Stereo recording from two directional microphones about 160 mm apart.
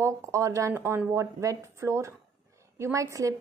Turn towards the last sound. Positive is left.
turn(degrees=-20)  # may be behind; listen again after turning